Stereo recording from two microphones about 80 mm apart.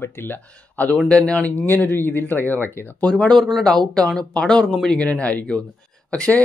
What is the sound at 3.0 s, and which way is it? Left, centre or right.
Speech, centre.